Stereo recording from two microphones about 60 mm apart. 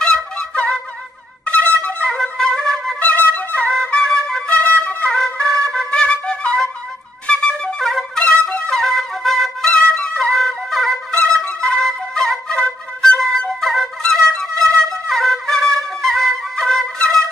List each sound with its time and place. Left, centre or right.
0.0 s music: centre
1.4 s music: left
2.0 s flute: centre
3.0 s music: left
3.8 s flute: centre
4.5 s music: left
5.1 s trumpet: centre
5.9 s flute: centre
8.2 s music: centre
8.6 s flute: centre
11.1 s flute: centre
11.7 s flute: centre
14.0 s music: centre
15.0 s flute: centre